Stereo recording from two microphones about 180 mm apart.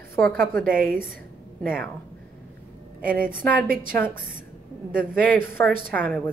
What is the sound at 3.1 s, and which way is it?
Speech, 50° right (ahead or behind).